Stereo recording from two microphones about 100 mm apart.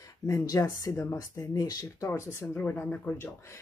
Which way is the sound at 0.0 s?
35° left (ahead or behind).